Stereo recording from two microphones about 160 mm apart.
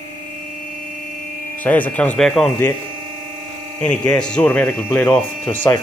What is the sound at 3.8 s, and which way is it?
Speech, 5° left (ahead or behind).